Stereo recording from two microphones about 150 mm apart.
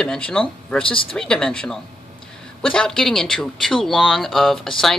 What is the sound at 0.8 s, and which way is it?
Speech, 35° left (ahead or behind).